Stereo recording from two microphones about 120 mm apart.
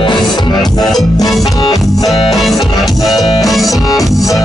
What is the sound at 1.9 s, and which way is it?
Music, centre (ahead or behind).